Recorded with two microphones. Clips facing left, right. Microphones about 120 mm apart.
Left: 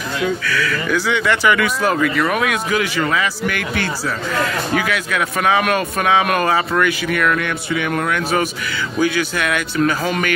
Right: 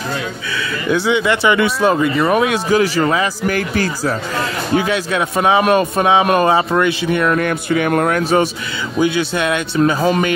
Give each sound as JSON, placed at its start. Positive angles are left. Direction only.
{"t": 0.5, "sound": "speech", "side_deg": -20}
{"t": 9.0, "sound": "speech", "side_deg": -25}